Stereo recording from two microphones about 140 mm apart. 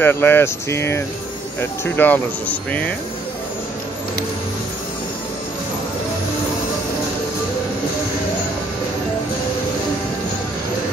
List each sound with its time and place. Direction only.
0.0 s speech: 15° left (ahead or behind)